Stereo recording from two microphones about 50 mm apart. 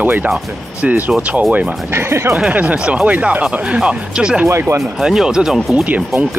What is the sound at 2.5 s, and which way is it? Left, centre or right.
Speech, right.